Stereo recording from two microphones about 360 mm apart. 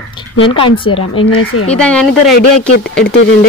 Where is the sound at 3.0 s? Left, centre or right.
Left.